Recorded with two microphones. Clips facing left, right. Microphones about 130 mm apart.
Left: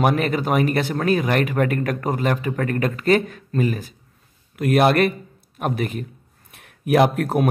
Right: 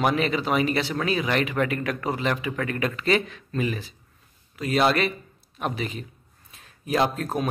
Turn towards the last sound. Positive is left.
turn(degrees=65)  # may be behind; listen again after turning